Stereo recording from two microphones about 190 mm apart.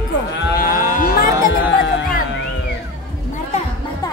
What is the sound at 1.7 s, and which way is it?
Music, 75° left (ahead or behind).